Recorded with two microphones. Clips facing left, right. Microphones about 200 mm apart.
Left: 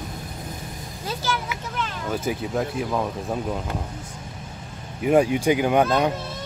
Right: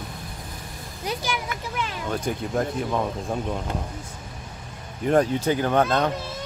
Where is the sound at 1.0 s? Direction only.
15° right (ahead or behind).